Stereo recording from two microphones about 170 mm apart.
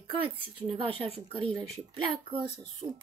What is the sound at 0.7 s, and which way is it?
Speech, 30° right (ahead or behind).